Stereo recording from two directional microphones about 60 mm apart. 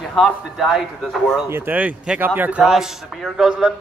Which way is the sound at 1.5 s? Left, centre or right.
Right.